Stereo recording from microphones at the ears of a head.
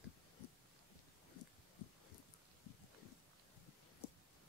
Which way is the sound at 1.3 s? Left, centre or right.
Left.